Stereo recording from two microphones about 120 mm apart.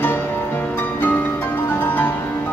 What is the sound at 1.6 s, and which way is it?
Music, 15° left (ahead or behind).